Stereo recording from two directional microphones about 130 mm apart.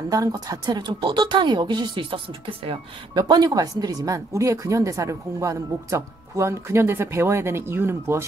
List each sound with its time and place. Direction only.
0.1 s speech: 25° right (ahead or behind)